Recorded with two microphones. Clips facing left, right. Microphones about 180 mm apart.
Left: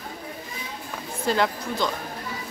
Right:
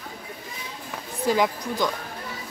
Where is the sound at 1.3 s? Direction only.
10° right (ahead or behind).